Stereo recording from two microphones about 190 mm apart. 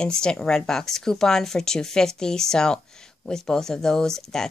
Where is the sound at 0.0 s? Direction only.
5° left (ahead or behind).